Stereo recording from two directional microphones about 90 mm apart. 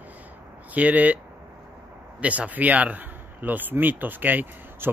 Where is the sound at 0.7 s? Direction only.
15° right (ahead or behind).